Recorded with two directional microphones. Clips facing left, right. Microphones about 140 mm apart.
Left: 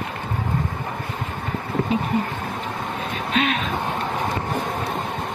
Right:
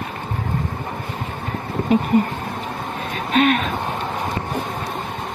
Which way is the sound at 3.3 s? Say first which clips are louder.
Right 6 dB; 45° right (ahead or behind).